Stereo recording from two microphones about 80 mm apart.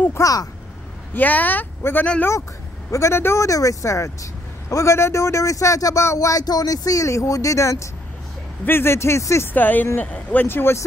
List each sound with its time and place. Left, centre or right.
0.1 s speech: left
1.1 s speech: left
9.5 s speech: left